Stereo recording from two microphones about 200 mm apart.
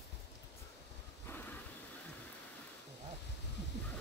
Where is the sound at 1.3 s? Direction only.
10° left (ahead or behind).